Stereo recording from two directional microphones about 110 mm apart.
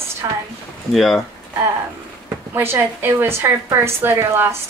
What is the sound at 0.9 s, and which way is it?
Speech, centre (ahead or behind).